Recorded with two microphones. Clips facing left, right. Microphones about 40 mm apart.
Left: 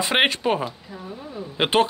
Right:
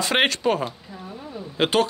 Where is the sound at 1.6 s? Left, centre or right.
Left.